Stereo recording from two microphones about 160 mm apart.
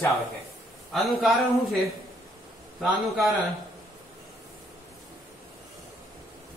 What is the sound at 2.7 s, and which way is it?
Speech, centre (ahead or behind).